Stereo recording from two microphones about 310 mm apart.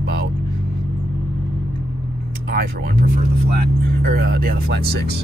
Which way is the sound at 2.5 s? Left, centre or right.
Right.